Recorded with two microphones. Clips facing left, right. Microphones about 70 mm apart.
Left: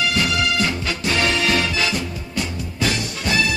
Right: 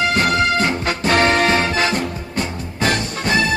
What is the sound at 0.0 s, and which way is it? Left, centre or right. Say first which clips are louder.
Music: right 4 dB; right.